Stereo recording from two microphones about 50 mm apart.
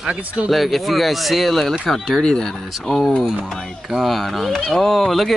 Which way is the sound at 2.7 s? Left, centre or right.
Centre.